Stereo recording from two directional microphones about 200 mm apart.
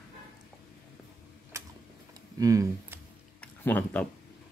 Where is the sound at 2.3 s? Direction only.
15° right (ahead or behind).